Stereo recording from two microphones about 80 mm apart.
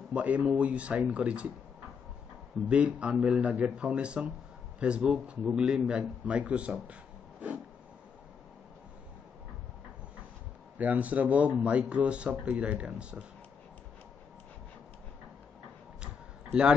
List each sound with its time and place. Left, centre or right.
0.1 s speech: centre
2.7 s a man's voice: centre
10.8 s a man's voice: centre